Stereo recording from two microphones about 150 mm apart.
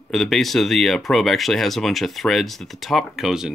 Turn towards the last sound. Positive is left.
turn(degrees=-5)  # may be behind; listen again after turning